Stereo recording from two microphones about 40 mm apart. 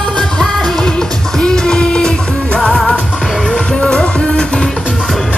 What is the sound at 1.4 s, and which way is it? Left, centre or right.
Music, centre.